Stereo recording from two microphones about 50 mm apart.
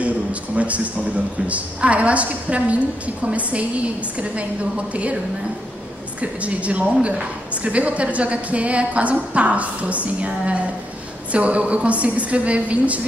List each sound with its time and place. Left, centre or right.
0.0 s a woman's voice: right
6.4 s a woman's voice: right